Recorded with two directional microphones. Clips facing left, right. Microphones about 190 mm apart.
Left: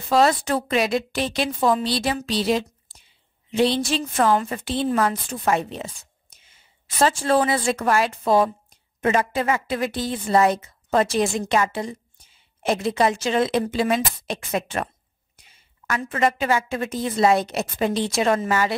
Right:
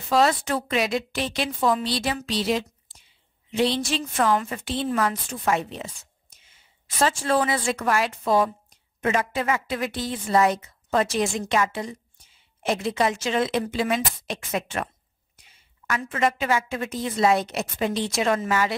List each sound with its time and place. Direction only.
0.1 s a woman's voice: 35° left (ahead or behind)
7.0 s a woman's voice: 35° left (ahead or behind)
15.9 s a woman's voice: 35° left (ahead or behind)